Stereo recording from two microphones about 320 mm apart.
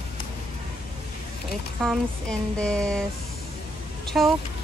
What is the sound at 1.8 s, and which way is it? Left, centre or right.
Speech, centre.